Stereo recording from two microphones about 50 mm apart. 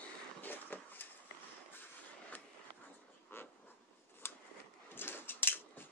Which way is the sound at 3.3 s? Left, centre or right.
Left.